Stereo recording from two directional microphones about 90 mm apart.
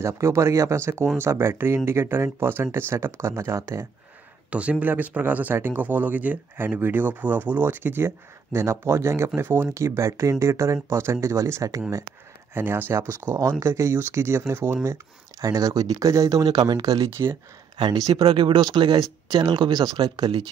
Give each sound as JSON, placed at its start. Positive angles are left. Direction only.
{"t": 0.0, "sound": "speech", "side_deg": -30}
{"t": 4.5, "sound": "speech", "side_deg": -15}
{"t": 12.5, "sound": "speech", "side_deg": -25}
{"t": 13.3, "sound": "speech", "side_deg": -35}
{"t": 15.4, "sound": "speech", "side_deg": -40}
{"t": 18.1, "sound": "speech", "side_deg": -65}